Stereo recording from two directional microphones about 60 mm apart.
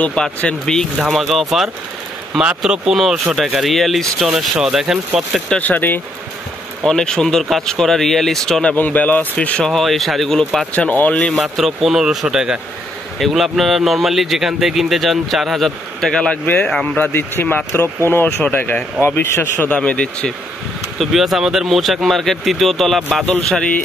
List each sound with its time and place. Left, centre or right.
0.0 s speech: centre
1.3 s speech: centre
2.3 s speech: centre
4.3 s speech: centre
5.6 s speech: left
6.8 s speech: centre
8.7 s speech: left
9.7 s speech: centre
10.7 s speech: left
11.3 s speech: centre; by 17.1 s left
17.1 s speech: left
19.0 s speech: left
19.7 s speech: left
21.0 s speech: centre